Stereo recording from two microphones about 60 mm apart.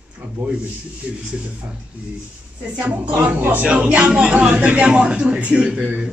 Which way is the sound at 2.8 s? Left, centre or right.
Right.